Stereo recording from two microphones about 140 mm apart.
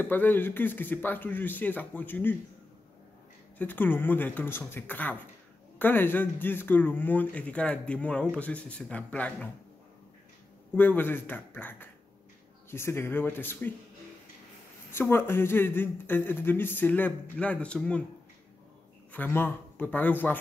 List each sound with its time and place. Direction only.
0.0 s speech: 15° left (ahead or behind)
3.5 s speech: 15° left (ahead or behind)
10.7 s speech: 15° left (ahead or behind)
14.9 s speech: 15° left (ahead or behind)
19.1 s speech: 15° left (ahead or behind)